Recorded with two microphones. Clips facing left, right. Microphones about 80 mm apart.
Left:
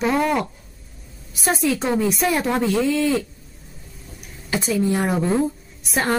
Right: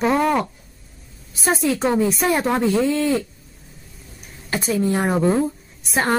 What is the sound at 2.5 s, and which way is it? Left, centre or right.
Speech, centre.